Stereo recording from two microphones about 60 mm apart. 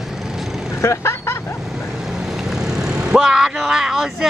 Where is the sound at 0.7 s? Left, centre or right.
Left.